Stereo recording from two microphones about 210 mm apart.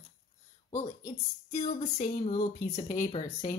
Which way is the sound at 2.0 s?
35° left (ahead or behind).